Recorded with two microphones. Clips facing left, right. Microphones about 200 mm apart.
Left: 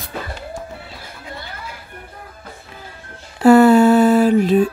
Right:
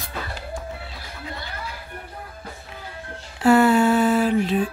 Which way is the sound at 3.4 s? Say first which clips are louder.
Left 6 dB; 40° left (ahead or behind).